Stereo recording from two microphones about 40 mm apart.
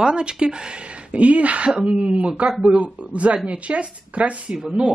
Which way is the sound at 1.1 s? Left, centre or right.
Right.